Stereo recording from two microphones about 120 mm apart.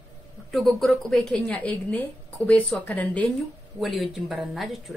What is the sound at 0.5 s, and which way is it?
Speech, centre (ahead or behind).